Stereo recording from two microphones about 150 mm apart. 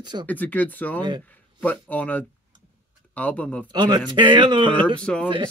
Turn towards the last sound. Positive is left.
turn(degrees=5)  # may be behind; listen again after turning